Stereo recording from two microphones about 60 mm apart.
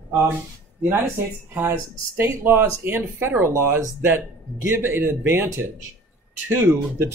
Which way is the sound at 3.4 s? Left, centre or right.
Right.